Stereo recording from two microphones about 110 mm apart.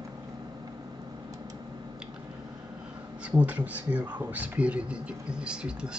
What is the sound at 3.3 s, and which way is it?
Speech, 15° right (ahead or behind).